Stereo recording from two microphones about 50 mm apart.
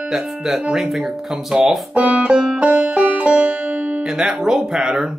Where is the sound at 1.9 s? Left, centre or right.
Right.